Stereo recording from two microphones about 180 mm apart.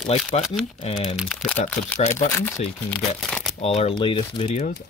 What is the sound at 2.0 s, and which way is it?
Speech, 40° left (ahead or behind).